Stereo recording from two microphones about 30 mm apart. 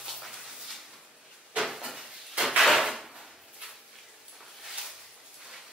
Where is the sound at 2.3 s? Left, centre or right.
Centre.